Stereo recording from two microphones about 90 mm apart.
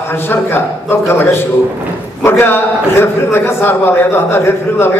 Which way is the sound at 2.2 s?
25° left (ahead or behind).